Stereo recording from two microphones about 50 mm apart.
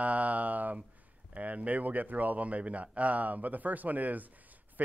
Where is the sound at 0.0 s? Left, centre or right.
Right.